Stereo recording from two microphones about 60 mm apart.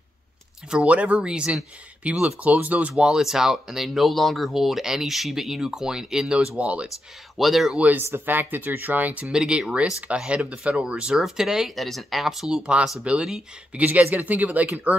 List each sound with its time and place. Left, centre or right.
0.7 s speech: centre
3.0 s speech: centre
7.3 s speech: centre
7.7 s speech: right
8.0 s speech: right
9.2 s speech: centre
11.1 s speech: centre